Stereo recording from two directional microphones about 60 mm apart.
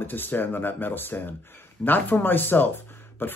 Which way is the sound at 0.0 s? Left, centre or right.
Left.